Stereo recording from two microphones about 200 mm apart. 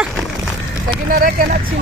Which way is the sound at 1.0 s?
45° right (ahead or behind).